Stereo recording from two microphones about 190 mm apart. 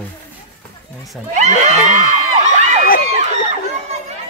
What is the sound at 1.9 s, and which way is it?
Crowd, 40° right (ahead or behind).